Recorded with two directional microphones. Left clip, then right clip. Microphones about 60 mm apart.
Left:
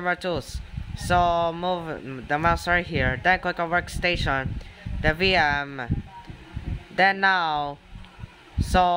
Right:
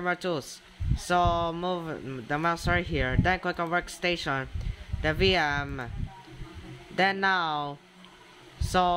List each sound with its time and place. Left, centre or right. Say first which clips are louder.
0.0 s speech: left 3 dB; left
7.0 s speech: left 5 dB; left
8.5 s a sound: left 4 dB; left